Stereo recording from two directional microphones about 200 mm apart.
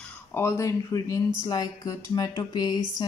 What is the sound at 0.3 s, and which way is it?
A woman's voice, 15° left (ahead or behind).